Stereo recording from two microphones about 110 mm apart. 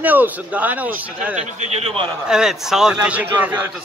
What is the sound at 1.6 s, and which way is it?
Speech, 75° right (ahead or behind).